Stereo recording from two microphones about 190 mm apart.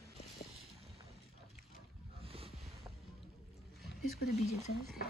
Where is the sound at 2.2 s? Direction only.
30° right (ahead or behind).